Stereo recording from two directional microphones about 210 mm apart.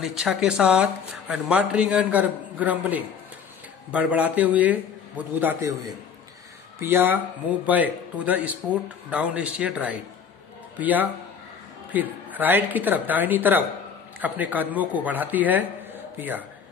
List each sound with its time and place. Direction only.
0.0 s a man's voice: centre (ahead or behind)
6.8 s a man's voice: 10° right (ahead or behind)